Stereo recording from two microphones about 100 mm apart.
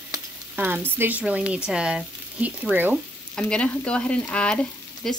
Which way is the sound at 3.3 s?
10° left (ahead or behind).